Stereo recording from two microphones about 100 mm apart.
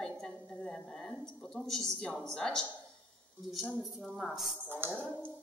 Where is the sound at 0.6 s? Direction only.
5° left (ahead or behind).